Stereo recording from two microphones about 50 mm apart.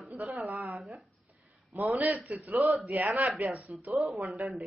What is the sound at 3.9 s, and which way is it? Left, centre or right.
Speech, centre.